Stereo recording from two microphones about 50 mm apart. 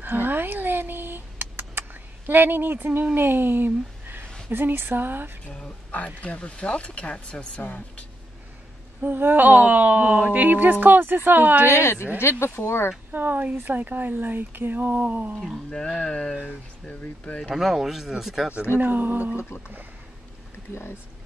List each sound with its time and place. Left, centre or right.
0.0 s a sound: right
3.2 s speech: right
5.5 s speech: left
9.0 s speech: right
11.6 s speech: left
13.1 s speech: right
16.0 s speech: centre
16.4 s speech: left
17.6 s speech: centre
18.8 s speech: right